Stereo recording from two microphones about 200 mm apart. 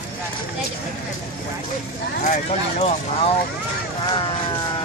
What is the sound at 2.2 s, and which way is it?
Speech, 35° left (ahead or behind).